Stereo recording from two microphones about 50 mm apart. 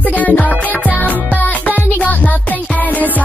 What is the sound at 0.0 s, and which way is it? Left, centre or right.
Music, left.